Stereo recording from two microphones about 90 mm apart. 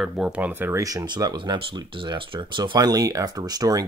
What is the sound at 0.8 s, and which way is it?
Speech, 50° right (ahead or behind).